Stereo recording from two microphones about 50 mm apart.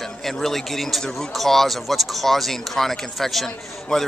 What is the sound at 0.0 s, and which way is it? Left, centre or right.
A man's voice, centre.